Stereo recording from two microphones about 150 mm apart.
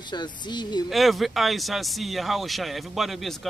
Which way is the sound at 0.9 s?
Centre (ahead or behind).